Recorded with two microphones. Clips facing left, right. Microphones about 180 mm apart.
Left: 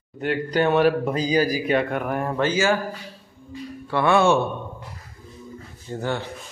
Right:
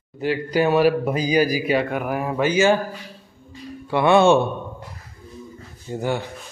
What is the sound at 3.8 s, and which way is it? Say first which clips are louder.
Speech: right 3 dB; 20° right (ahead or behind).